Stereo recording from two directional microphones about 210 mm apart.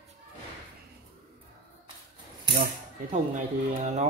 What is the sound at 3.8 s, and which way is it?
Speech, 35° right (ahead or behind).